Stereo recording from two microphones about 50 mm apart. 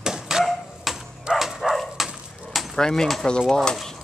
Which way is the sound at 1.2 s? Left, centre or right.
Centre.